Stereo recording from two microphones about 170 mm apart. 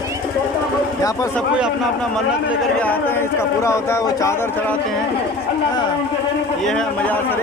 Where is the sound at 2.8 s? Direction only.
10° left (ahead or behind).